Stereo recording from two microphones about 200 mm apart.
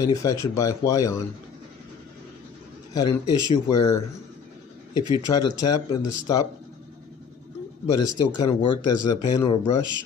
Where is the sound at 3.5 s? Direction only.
20° left (ahead or behind).